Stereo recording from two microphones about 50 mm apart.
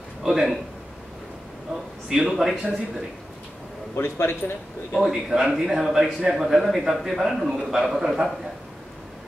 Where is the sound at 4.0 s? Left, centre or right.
Left.